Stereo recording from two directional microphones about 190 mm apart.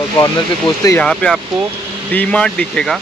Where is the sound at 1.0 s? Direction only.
5° left (ahead or behind).